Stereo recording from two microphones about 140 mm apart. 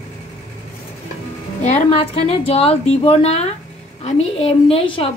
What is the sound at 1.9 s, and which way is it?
A woman's voice, 45° left (ahead or behind).